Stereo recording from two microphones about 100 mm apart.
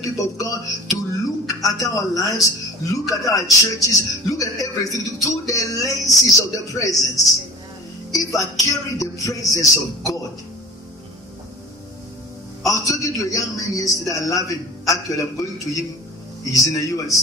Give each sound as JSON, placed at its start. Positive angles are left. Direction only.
{"t": 0.0, "sound": "a man's voice", "side_deg": 35}
{"t": 8.1, "sound": "a man's voice", "side_deg": 35}
{"t": 12.6, "sound": "a man's voice", "side_deg": 35}